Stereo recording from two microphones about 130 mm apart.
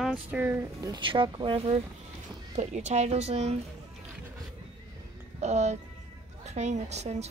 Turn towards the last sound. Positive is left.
turn(degrees=-55)  # may be behind; listen again after turning